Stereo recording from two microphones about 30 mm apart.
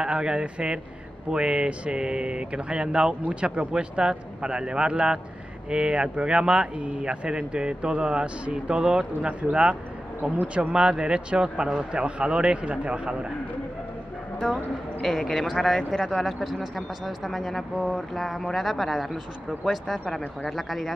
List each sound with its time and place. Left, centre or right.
0.0 s a man's voice: right
3.9 s a man's voice: right
9.4 s speech: right
10.7 s a man's voice: right
14.4 s speech: centre
15.0 s speech: centre